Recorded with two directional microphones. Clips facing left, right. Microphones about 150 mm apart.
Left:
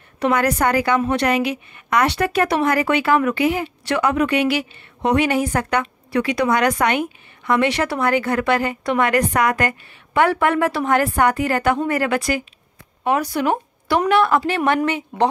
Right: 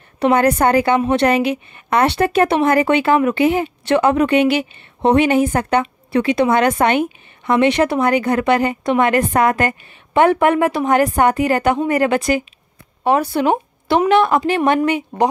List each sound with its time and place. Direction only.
0.2 s a woman's voice: 30° right (ahead or behind)